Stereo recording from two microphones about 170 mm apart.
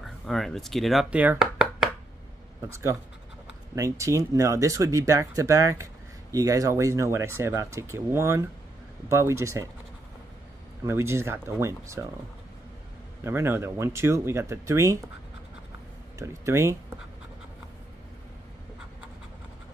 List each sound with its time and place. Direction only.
0.0 s speech: centre (ahead or behind)
3.7 s speech: 20° right (ahead or behind)
10.8 s speech: 15° right (ahead or behind)
13.2 s speech: 15° right (ahead or behind)
16.2 s speech: 15° right (ahead or behind)